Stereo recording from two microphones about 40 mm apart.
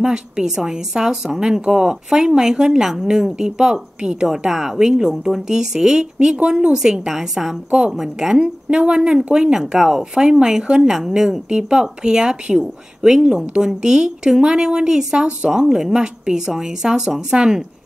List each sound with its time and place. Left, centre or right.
0.0 s a woman's voice: centre
4.5 s a woman's voice: centre
4.7 s a woman's voice: centre
5.1 s a woman's voice: centre
5.5 s a woman's voice: centre
8.6 s a woman's voice: right
10.9 s a woman's voice: centre
11.4 s a woman's voice: right